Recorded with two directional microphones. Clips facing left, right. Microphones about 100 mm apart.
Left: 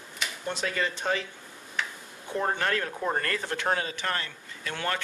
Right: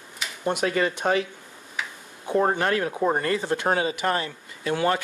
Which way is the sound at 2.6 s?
20° right (ahead or behind).